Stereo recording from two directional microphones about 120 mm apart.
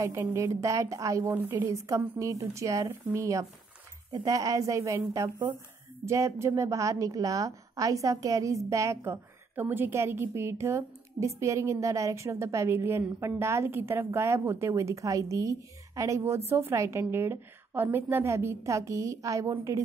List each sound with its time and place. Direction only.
0.0 s a woman's voice: 25° right (ahead or behind)
1.3 s a woman's voice: 15° right (ahead or behind)
1.7 s a woman's voice: 25° right (ahead or behind)
6.0 s a woman's voice: 25° right (ahead or behind)